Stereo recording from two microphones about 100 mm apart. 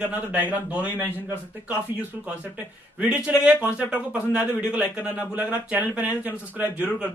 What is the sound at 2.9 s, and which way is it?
Speech, 10° right (ahead or behind).